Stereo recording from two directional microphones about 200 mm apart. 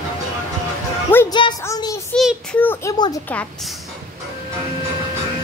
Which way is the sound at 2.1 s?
5° left (ahead or behind).